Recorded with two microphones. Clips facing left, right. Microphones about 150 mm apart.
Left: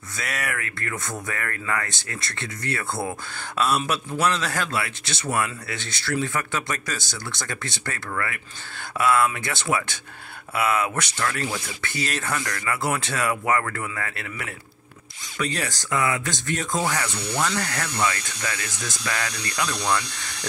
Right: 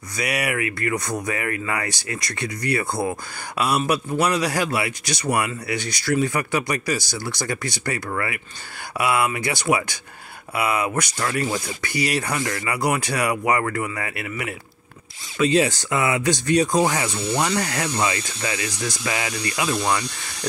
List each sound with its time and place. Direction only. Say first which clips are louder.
0.1 s speech: right 6 dB; 15° right (ahead or behind)